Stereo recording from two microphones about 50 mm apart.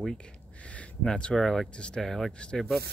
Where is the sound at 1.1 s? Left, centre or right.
Left.